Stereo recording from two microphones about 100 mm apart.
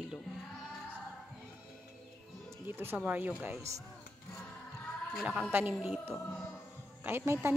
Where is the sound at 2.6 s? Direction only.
20° right (ahead or behind).